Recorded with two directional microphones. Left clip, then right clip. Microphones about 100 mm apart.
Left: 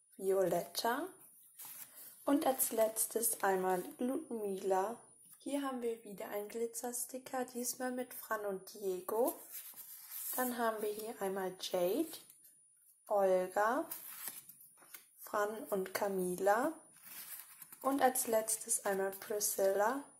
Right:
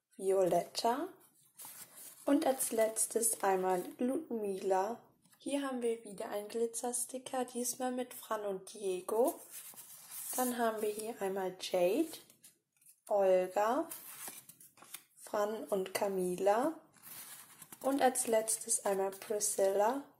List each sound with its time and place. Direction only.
0.2 s speech: 10° right (ahead or behind)
2.2 s speech: 15° right (ahead or behind)
15.2 s speech: 15° right (ahead or behind)
17.8 s speech: 15° right (ahead or behind)